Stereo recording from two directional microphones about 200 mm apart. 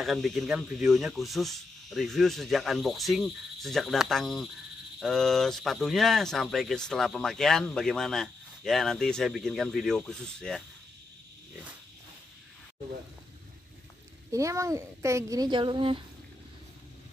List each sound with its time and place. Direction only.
0.0 s speech: centre (ahead or behind)
14.3 s speech: 15° right (ahead or behind)